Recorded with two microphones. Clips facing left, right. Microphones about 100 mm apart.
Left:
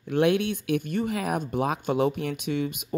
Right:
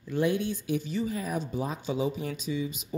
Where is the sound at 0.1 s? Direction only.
70° left (ahead or behind).